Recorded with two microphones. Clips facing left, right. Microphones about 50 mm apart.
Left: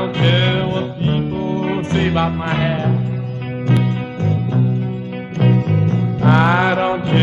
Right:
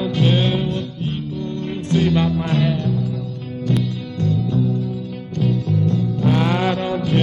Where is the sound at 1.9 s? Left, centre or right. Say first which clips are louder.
Right 3 dB; left.